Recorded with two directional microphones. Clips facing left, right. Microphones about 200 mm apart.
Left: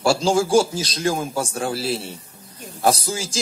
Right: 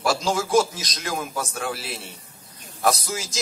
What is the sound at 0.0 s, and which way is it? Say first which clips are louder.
A man's voice: left 5 dB; 30° left (ahead or behind).